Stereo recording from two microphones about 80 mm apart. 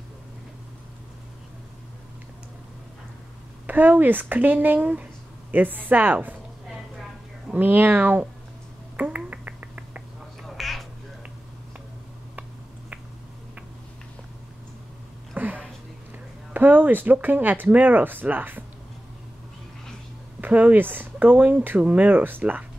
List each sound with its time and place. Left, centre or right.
3.6 s speech: right
7.5 s speech: right
8.9 s finger snapping: right
10.4 s a sound: centre
15.3 s a sound: right
16.5 s speech: right
20.3 s speech: right